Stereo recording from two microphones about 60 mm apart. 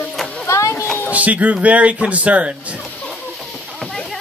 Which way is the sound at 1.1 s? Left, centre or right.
Right.